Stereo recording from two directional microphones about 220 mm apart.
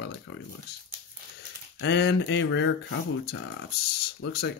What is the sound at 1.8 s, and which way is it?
Speech, 50° left (ahead or behind).